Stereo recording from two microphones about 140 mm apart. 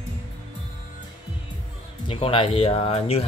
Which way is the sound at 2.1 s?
40° left (ahead or behind).